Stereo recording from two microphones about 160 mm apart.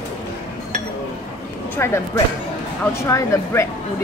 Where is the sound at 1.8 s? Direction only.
15° left (ahead or behind).